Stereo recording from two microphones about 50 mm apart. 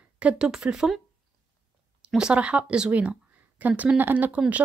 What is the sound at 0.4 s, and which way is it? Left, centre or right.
Speech, centre.